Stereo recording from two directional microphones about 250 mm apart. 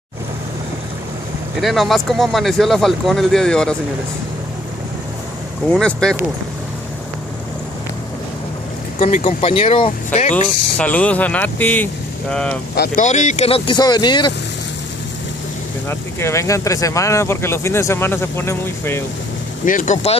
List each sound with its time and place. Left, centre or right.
1.6 s speech: centre
5.7 s speech: centre
9.0 s speech: left
10.8 s speech: centre
12.7 s speech: left; by 14.3 s centre
15.9 s speech: centre
19.6 s speech: left